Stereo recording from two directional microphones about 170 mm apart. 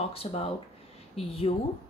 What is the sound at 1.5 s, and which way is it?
Speech, 35° left (ahead or behind).